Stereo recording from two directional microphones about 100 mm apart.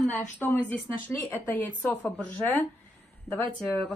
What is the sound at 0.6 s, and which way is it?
A woman's voice, 20° left (ahead or behind).